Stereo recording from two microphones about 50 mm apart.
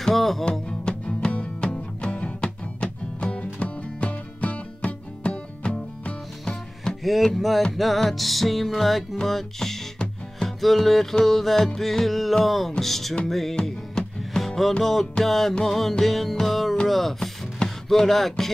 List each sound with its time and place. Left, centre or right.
0.0 s music: centre
0.5 s music: centre
7.0 s music: centre
17.6 s speech: centre